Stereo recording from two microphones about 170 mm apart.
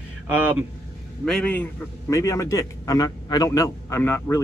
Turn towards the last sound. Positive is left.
turn(degrees=15)  # may be behind; listen again after turning